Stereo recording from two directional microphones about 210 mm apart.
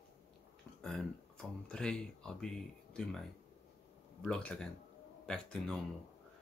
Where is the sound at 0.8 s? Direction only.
5° left (ahead or behind).